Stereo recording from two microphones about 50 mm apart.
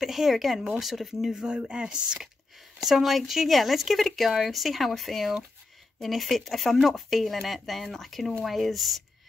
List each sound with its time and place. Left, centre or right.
0.0 s speech: centre
1.3 s speech: centre
2.8 s speech: centre